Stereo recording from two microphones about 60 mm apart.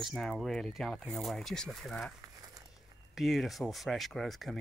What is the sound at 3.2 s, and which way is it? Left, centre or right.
Speech, centre.